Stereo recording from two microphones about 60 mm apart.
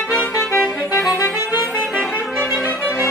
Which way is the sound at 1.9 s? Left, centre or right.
Right.